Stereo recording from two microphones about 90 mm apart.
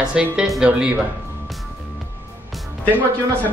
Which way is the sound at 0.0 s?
10° right (ahead or behind).